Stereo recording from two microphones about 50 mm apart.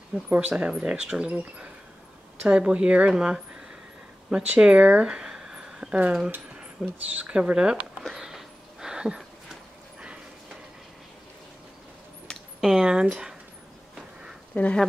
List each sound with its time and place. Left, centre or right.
0.3 s speech: right
0.7 s speech: centre
2.4 s speech: right
4.3 s speech: centre
5.0 s a sound: centre
6.5 s speech: right
8.1 s a sound: centre
12.5 s speech: centre
14.5 s speech: left